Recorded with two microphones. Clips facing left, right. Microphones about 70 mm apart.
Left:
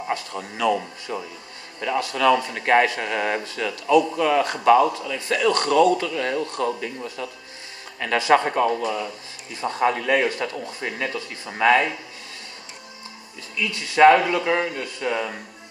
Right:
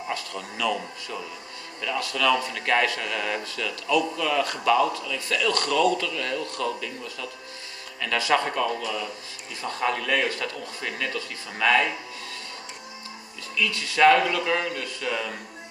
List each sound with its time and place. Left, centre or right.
0.1 s a man's voice: left
13.6 s a man's voice: left